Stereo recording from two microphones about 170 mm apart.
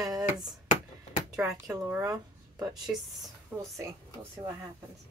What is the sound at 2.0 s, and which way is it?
Speech, 20° right (ahead or behind).